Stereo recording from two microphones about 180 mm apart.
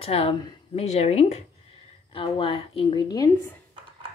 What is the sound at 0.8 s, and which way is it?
A woman's voice, 35° left (ahead or behind).